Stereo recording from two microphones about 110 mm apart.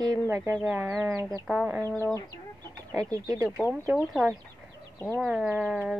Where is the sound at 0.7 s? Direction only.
30° right (ahead or behind).